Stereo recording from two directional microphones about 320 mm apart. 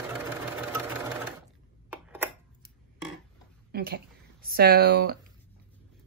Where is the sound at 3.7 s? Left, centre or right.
Right.